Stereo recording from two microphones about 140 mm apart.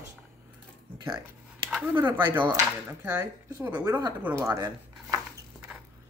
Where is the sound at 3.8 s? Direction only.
25° right (ahead or behind).